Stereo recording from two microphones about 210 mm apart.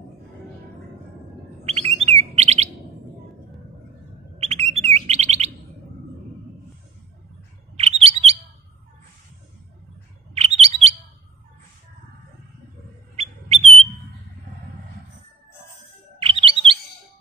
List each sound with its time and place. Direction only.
1.7 s bird: 30° right (ahead or behind)
4.4 s bird: 30° right (ahead or behind)
8.0 s chirp: 30° right (ahead or behind)
10.3 s bird: 30° right (ahead or behind)
13.1 s bird: 30° right (ahead or behind)
16.2 s chirp: 25° right (ahead or behind)